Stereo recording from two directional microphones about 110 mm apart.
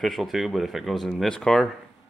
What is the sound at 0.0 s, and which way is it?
Speech, centre (ahead or behind).